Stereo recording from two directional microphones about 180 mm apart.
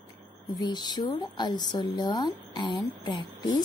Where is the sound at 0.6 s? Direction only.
25° left (ahead or behind).